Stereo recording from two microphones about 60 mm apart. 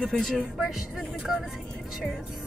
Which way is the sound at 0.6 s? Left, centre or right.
Centre.